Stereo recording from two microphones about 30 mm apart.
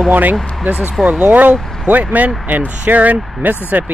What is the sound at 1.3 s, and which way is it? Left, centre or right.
Speech, right.